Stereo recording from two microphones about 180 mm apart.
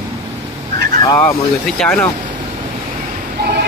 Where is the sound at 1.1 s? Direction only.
5° left (ahead or behind).